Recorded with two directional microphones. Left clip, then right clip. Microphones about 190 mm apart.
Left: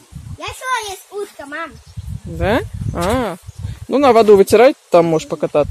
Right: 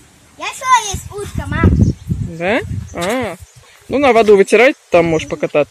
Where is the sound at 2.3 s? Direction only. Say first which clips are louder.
Right 1 dB; 10° left (ahead or behind).